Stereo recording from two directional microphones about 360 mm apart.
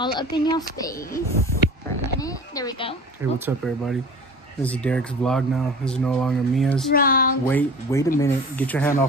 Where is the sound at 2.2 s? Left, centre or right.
Centre.